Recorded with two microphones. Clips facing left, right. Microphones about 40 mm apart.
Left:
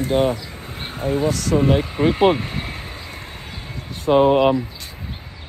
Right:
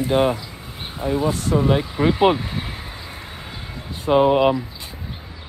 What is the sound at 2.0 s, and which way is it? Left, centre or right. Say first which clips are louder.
Speech: even; centre.